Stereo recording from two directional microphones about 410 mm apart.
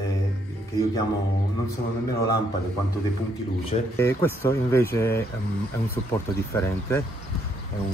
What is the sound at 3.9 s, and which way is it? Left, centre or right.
Speech, centre.